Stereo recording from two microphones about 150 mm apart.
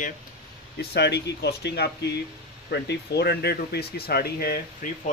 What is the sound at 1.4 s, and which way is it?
Speech, 90° left.